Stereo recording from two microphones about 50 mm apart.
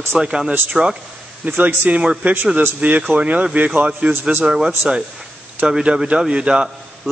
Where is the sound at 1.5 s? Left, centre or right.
Right.